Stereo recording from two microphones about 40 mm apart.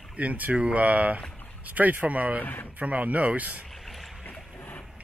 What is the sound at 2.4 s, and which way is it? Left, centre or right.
Speech, left.